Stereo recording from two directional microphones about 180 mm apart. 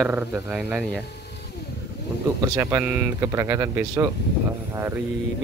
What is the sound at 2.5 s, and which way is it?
Speech, 15° right (ahead or behind).